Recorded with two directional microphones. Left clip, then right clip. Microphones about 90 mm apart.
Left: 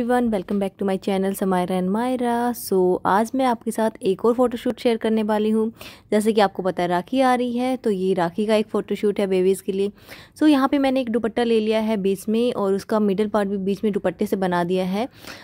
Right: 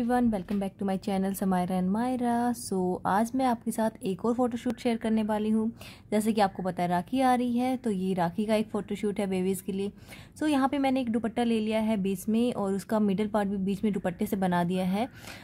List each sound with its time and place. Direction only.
0.0 s a woman's voice: 55° left (ahead or behind); by 15.0 s 40° left (ahead or behind)